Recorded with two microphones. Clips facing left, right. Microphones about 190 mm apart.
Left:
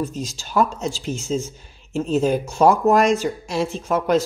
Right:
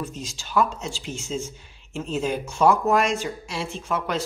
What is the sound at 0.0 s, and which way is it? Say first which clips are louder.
Speech: left 7 dB; 40° left (ahead or behind).